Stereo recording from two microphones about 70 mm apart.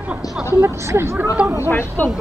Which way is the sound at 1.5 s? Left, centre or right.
Left.